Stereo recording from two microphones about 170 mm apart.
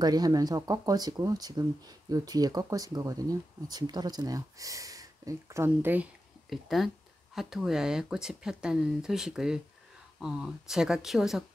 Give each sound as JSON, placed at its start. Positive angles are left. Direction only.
{"t": 0.0, "sound": "speech", "side_deg": -20}
{"t": 6.5, "sound": "speech", "side_deg": 0}